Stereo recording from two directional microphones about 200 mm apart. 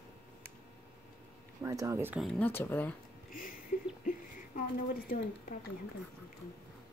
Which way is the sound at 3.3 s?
45° left (ahead or behind).